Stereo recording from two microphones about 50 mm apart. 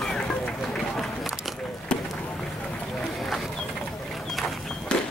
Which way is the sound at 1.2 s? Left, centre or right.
Centre.